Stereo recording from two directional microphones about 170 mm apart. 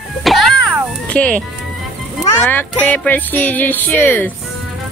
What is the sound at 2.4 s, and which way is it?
Speech, 10° left (ahead or behind).